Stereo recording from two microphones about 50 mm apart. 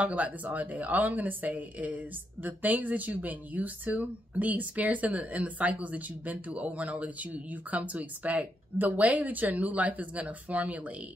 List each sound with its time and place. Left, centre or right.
0.0 s a woman's voice: right